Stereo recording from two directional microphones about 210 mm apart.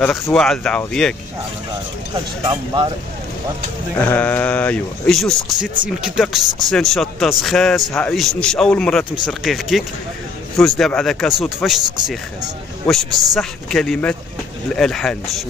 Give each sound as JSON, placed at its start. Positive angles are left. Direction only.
{"t": 0.0, "sound": "speech", "side_deg": 5}
{"t": 2.4, "sound": "speech", "side_deg": -20}
{"t": 4.0, "sound": "speech", "side_deg": 10}